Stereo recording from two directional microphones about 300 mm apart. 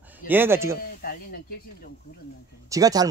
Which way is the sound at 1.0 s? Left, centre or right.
Left.